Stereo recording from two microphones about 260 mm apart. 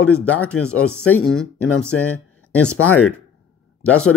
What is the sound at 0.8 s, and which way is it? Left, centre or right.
Speech, left.